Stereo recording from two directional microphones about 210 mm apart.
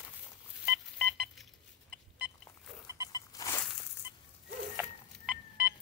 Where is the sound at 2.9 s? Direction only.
15° right (ahead or behind).